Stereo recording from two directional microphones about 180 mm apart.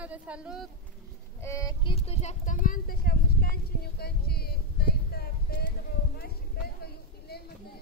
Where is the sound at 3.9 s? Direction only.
60° left (ahead or behind).